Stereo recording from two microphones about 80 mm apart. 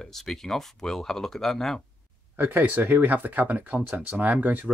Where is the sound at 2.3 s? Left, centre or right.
Right.